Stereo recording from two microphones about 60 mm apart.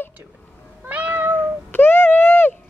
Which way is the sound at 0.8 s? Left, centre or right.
Right.